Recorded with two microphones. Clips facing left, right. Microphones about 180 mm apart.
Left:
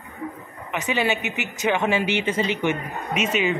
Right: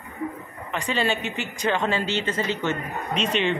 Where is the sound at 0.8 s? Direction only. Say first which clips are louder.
Left 1 dB; 20° left (ahead or behind).